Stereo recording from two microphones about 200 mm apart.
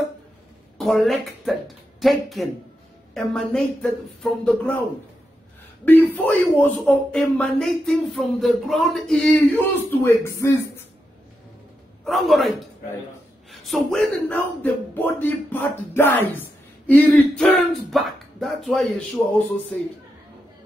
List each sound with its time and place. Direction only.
0.7 s speech: centre (ahead or behind)
5.9 s speech: 10° left (ahead or behind)
9.8 s speech: 10° left (ahead or behind)
12.0 s a man's voice: centre (ahead or behind)